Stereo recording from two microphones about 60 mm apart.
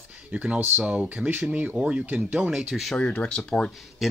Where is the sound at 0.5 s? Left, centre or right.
Right.